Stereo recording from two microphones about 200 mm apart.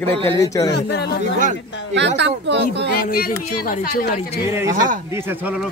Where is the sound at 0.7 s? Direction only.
55° left (ahead or behind).